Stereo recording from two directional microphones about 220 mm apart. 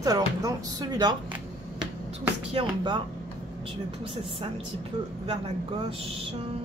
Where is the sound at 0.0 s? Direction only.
15° right (ahead or behind).